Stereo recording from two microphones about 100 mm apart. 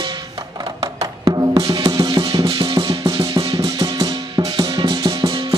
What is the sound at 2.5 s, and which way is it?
Music, 55° right (ahead or behind).